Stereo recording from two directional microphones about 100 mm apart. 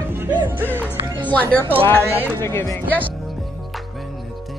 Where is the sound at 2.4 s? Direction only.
30° left (ahead or behind).